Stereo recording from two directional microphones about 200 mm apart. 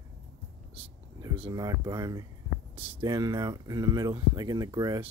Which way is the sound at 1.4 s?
20° right (ahead or behind).